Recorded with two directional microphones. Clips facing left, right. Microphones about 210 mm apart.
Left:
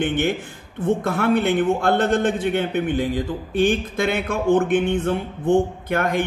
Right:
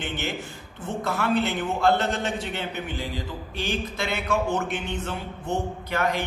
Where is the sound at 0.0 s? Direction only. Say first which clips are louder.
Left 9 dB; 55° left (ahead or behind).